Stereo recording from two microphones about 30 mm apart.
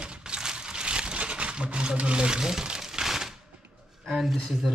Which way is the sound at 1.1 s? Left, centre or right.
Right.